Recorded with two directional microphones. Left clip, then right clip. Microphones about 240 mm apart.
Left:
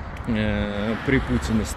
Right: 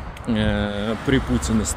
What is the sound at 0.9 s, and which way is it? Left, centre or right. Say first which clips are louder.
Speech: right 1 dB; right.